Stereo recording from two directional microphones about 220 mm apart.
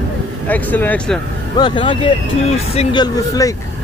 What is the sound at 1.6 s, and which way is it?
Speech, 20° left (ahead or behind).